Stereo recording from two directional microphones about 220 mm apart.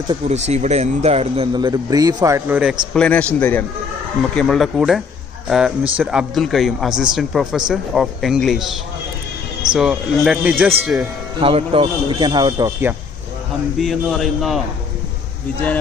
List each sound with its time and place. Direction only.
0.1 s a man's voice: 30° right (ahead or behind); by 2.8 s 5° right (ahead or behind)
2.9 s a man's voice: 5° left (ahead or behind)
9.8 s speech: centre (ahead or behind)
11.3 s a man's voice: 25° right (ahead or behind)
13.7 s speech: centre (ahead or behind)